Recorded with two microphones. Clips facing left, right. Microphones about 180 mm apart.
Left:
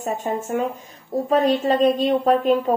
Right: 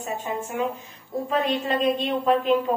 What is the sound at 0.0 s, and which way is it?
A woman's voice, 45° left (ahead or behind).